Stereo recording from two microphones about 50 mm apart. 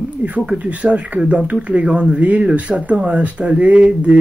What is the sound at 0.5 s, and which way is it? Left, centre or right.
Speech, right.